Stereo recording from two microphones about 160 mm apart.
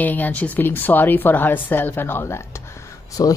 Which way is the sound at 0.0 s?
10° left (ahead or behind).